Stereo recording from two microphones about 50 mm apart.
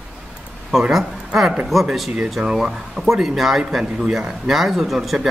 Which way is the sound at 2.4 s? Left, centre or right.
Centre.